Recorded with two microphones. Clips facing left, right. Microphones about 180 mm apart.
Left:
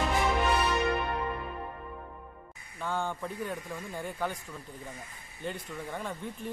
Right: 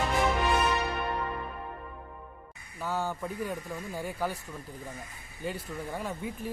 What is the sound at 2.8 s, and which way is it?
Speech, 5° right (ahead or behind).